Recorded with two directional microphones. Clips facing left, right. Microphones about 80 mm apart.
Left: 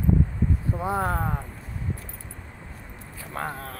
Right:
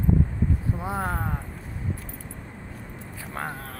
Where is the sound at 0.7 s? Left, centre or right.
Left.